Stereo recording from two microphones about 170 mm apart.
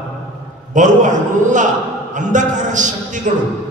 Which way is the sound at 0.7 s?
45° right (ahead or behind).